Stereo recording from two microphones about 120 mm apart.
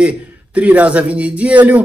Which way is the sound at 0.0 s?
10° right (ahead or behind).